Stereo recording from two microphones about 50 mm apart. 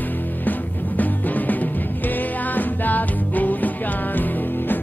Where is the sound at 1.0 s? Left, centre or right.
Left.